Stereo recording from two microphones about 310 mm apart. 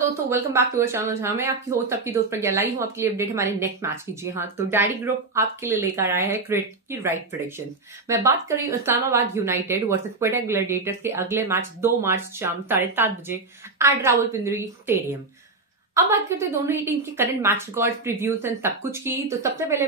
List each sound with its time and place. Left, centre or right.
0.0 s a woman's voice: centre